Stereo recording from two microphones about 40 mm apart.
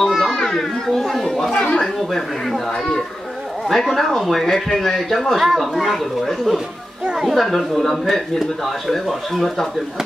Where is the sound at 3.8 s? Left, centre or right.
Centre.